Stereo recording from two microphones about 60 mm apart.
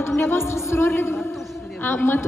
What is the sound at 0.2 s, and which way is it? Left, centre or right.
A woman's voice, left.